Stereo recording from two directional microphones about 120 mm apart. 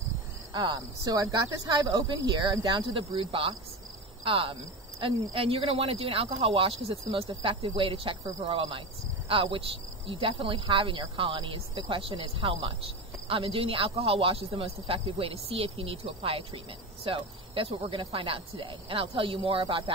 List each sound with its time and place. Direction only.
0.5 s speech: 35° right (ahead or behind)